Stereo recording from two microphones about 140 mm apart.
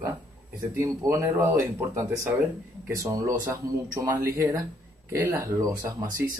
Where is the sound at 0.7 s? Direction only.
20° right (ahead or behind).